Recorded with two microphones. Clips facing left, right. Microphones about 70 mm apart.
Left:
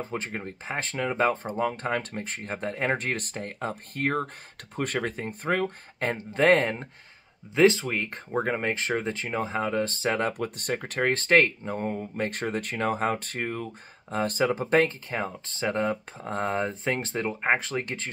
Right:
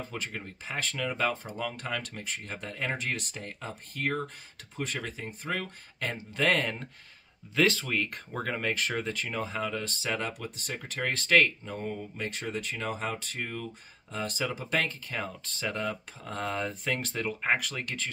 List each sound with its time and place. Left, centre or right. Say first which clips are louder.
0.0 s speech: left 5 dB; left